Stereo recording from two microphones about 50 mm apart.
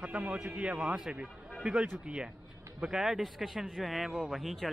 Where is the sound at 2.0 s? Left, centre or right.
Centre.